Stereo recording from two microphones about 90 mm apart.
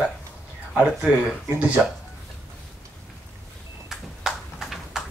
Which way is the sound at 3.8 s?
Centre (ahead or behind).